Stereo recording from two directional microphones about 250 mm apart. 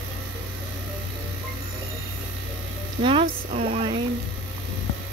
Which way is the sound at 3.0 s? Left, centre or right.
Right.